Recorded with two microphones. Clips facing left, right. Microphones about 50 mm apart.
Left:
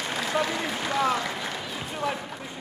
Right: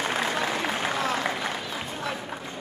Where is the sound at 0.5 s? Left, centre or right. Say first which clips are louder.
Right 1 dB; centre.